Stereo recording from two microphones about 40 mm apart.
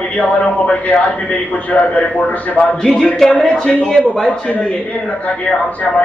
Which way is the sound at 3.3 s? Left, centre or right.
Left.